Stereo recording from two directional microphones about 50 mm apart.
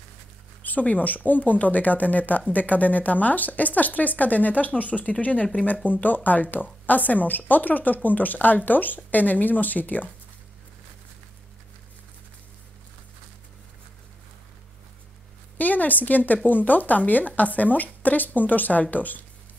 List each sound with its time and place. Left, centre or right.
0.6 s speech: left
15.5 s a woman's voice: left